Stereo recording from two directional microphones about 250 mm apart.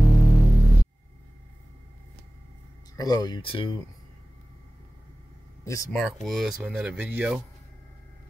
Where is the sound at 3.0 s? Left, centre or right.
Centre.